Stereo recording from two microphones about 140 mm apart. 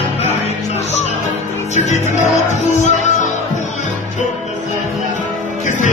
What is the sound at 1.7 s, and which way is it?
Music, 55° left (ahead or behind).